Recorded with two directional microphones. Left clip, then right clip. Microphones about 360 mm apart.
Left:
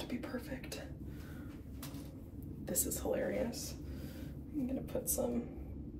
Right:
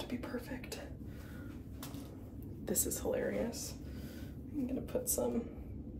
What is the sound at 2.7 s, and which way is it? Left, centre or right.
Speech, centre.